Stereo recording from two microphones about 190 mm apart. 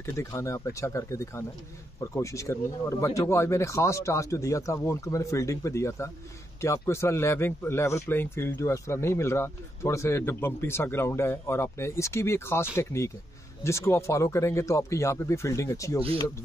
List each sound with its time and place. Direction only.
0.0 s a man's voice: 15° left (ahead or behind)